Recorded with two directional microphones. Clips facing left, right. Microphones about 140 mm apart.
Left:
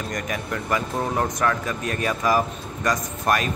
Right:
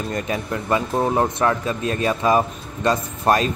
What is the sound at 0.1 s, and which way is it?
Speech, 25° right (ahead or behind).